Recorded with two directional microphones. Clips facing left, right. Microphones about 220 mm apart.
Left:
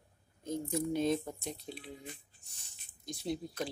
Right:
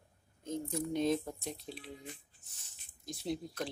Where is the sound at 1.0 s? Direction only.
Centre (ahead or behind).